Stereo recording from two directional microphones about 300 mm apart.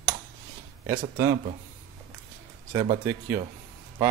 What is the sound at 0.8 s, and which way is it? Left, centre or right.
Speech, centre.